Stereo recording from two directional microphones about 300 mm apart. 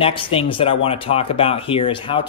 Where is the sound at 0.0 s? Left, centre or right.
Centre.